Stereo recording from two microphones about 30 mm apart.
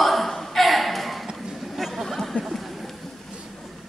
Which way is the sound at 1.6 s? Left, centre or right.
Centre.